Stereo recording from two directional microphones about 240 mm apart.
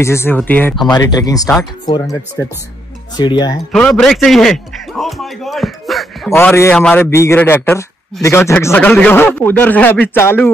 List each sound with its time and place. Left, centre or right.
0.0 s a man's voice: centre
3.2 s a man's voice: centre
3.7 s a man's voice: centre